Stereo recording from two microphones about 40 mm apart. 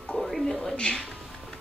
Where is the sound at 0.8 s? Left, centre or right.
Left.